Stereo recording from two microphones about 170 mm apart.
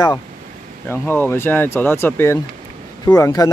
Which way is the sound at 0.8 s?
15° left (ahead or behind).